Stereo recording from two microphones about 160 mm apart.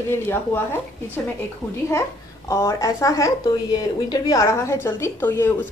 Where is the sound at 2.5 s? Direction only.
20° left (ahead or behind).